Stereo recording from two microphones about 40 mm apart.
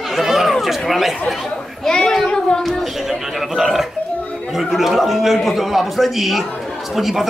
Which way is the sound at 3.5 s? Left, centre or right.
Centre.